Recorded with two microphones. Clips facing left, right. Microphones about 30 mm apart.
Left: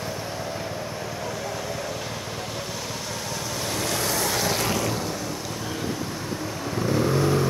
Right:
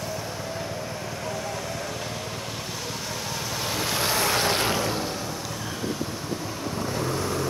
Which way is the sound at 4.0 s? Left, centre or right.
Right.